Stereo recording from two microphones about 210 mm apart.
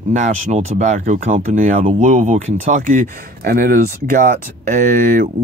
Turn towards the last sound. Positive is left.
turn(degrees=-35)  # may be behind; listen again after turning